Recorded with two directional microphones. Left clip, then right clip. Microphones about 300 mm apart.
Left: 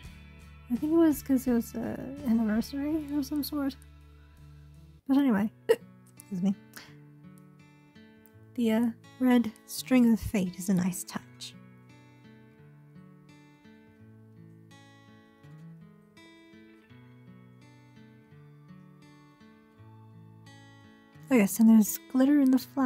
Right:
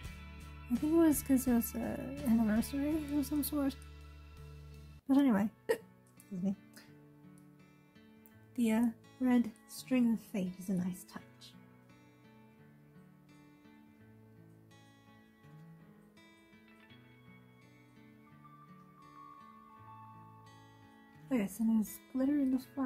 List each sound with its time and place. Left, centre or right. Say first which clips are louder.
0.7 s speech: left 5 dB; centre
5.0 s speech: left 4 dB; centre
8.5 s speech: left 5 dB; centre
21.3 s speech: left 12 dB; left